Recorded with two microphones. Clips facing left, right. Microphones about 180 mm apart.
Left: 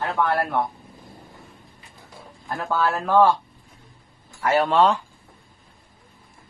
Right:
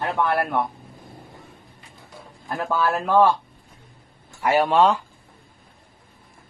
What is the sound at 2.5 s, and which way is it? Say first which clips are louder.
Speech: right 1 dB; 15° right (ahead or behind).